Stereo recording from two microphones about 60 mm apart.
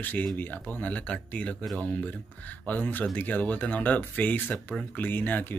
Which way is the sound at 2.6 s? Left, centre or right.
Left.